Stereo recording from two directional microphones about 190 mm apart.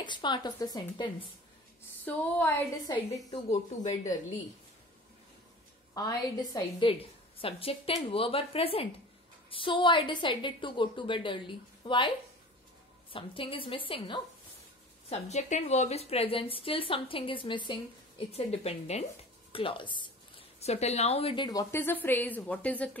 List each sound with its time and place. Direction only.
0.0 s a woman's voice: 25° left (ahead or behind)
2.0 s a woman's voice: 10° left (ahead or behind)
3.9 s a woman's voice: 40° left (ahead or behind)
5.9 s a woman's voice: 20° left (ahead or behind)
13.1 s a woman's voice: 30° left (ahead or behind)
15.0 s a woman's voice: 35° left (ahead or behind)
21.5 s a woman's voice: 15° left (ahead or behind)